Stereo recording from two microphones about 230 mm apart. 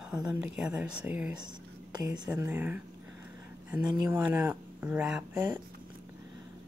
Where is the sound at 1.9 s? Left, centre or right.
Centre.